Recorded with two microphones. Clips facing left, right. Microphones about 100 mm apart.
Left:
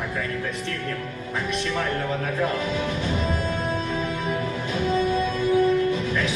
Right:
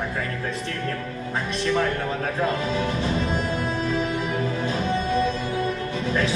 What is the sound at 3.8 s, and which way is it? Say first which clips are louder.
Music: right 2 dB; 30° right (ahead or behind).